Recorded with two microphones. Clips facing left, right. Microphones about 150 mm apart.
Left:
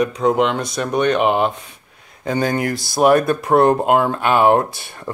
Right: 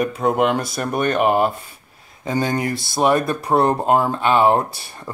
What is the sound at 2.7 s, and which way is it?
Speech, centre (ahead or behind).